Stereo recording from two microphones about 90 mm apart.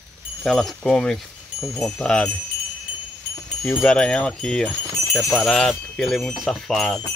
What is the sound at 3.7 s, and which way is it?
Chime, 10° left (ahead or behind).